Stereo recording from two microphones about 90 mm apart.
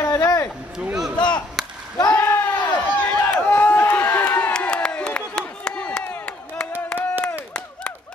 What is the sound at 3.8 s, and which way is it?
Run, 15° left (ahead or behind).